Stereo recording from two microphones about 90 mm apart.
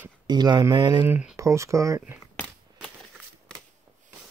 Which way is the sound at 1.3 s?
35° right (ahead or behind).